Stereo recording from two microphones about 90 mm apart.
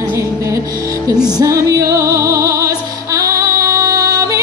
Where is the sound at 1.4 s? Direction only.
40° right (ahead or behind).